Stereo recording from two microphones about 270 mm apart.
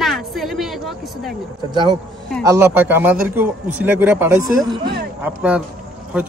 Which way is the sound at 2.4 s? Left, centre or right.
Centre.